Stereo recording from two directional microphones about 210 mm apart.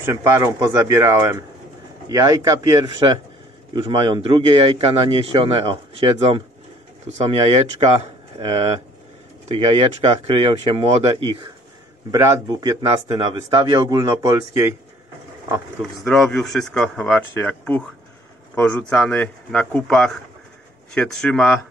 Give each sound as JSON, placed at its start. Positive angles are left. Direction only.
{"t": 0.0, "sound": "a man's voice", "side_deg": -15}
{"t": 15.8, "sound": "speech", "side_deg": 0}